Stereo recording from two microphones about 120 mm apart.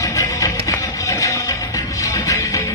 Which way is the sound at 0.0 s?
25° left (ahead or behind).